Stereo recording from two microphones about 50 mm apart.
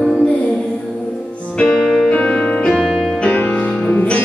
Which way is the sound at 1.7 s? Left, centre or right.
Centre.